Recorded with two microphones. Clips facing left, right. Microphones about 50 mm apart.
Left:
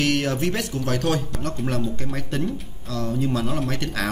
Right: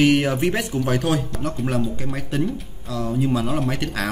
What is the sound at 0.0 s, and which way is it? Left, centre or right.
Speech, centre.